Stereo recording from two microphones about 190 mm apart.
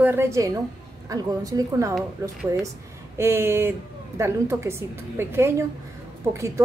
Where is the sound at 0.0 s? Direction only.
15° right (ahead or behind).